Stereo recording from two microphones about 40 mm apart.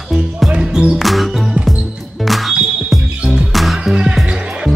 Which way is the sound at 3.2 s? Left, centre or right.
Centre.